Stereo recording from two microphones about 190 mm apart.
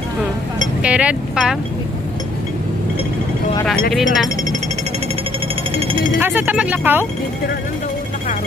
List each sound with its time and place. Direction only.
0.8 s speech: 5° right (ahead or behind)
3.9 s speech: centre (ahead or behind)
5.8 s speech: 30° right (ahead or behind)
6.1 s speech: 10° right (ahead or behind)